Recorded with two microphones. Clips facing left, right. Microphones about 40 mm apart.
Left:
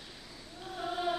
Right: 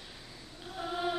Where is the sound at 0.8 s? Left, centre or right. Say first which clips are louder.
Even; centre.